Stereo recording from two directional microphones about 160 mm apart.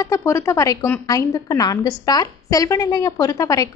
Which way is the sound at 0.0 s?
20° left (ahead or behind).